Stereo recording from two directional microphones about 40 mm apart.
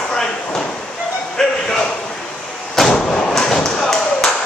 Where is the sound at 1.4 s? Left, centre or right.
Centre.